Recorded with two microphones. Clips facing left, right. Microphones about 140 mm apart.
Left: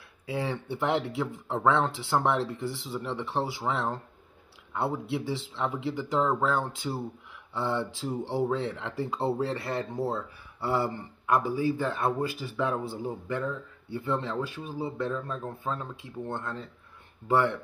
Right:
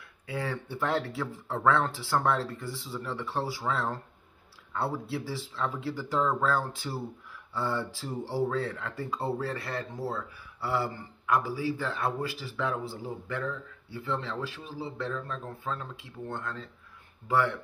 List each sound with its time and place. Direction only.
0.3 s speech: 25° left (ahead or behind)